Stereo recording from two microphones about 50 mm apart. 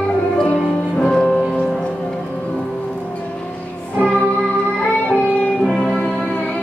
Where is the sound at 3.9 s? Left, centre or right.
Left.